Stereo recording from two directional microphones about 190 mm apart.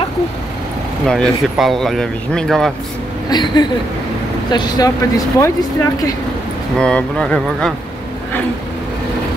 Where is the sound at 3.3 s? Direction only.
20° left (ahead or behind).